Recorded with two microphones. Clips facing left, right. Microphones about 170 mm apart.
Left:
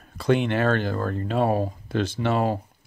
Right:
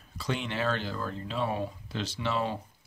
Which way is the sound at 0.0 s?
55° left (ahead or behind).